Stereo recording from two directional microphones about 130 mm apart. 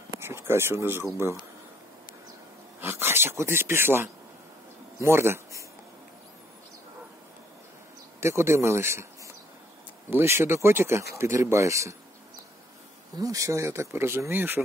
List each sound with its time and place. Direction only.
0.2 s speech: 20° right (ahead or behind)
2.8 s speech: 15° right (ahead or behind)
8.2 s speech: 20° right (ahead or behind)
10.0 s speech: 20° right (ahead or behind)
13.2 s speech: 25° right (ahead or behind)